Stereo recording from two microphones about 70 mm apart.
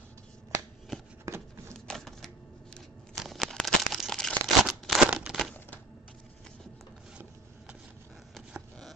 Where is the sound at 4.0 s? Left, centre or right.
Centre.